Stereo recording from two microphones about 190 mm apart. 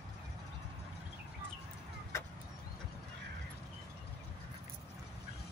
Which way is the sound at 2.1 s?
15° left (ahead or behind).